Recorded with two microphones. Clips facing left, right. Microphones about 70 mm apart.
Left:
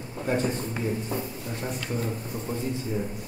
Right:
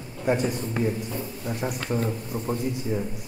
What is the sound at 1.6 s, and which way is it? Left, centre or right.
Speech, right.